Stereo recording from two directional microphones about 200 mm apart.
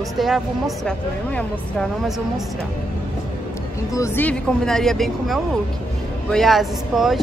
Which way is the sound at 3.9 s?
15° left (ahead or behind).